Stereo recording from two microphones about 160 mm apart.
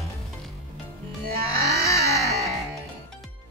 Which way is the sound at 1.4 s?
75° right (ahead or behind).